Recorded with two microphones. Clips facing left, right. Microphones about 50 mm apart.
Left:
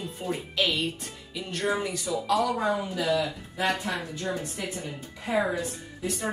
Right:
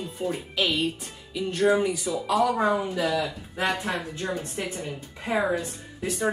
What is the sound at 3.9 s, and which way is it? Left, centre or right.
Speech, right.